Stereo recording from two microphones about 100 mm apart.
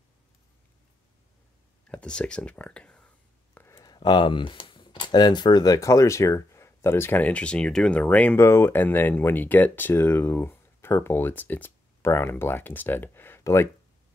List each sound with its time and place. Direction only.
1.9 s speech: 10° left (ahead or behind)
3.5 s a sound: 25° left (ahead or behind)
3.8 s speech: 45° left (ahead or behind); by 13.7 s 25° left (ahead or behind)